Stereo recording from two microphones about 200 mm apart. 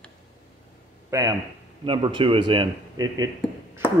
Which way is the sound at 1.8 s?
25° right (ahead or behind).